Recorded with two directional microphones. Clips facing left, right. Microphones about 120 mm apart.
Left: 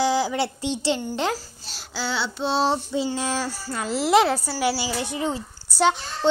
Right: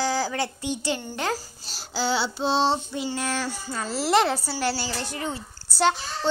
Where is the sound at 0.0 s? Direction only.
20° left (ahead or behind).